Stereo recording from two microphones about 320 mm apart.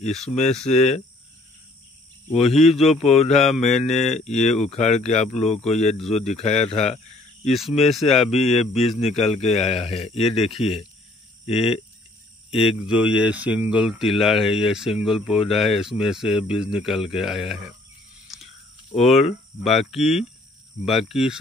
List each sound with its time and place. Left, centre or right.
0.0 s a man's voice: centre
2.3 s a man's voice: centre
2.8 s speech: centre
3.1 s a man's voice: centre
7.9 s speech: centre
8.3 s a man's voice: centre
12.8 s speech: centre
18.9 s speech: centre